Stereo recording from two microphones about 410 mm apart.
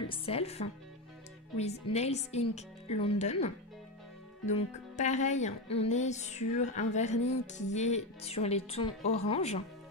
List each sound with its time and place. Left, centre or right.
0.1 s speech: centre